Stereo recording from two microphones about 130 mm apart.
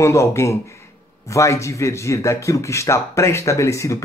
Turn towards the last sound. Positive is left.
turn(degrees=25)  # may be behind; listen again after turning